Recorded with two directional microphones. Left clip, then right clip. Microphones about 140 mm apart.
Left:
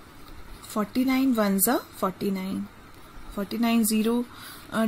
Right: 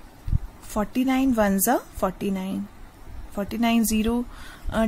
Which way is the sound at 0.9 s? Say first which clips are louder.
Right 1 dB; 40° right (ahead or behind).